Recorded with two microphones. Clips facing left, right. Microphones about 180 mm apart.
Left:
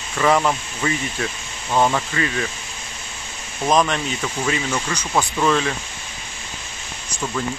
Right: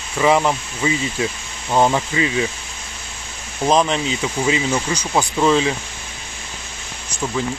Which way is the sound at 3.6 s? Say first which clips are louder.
Right 2 dB; 25° right (ahead or behind).